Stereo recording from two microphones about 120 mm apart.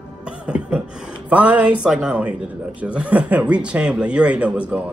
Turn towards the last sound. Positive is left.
turn(degrees=-10)  # may be behind; listen again after turning